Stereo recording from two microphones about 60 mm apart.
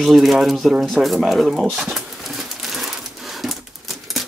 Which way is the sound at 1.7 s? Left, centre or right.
Centre.